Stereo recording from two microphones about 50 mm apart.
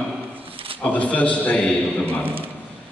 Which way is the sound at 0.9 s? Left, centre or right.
Left.